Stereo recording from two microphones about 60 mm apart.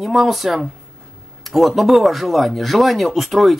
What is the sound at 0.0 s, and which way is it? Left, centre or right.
Speech, centre.